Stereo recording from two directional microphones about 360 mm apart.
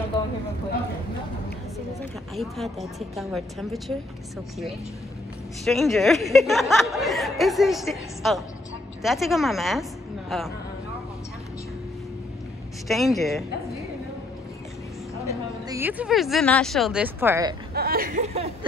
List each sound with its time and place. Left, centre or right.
2.3 s speech: centre
5.7 s speech: centre
12.8 s speech: centre
15.7 s speech: centre
17.7 s speech: right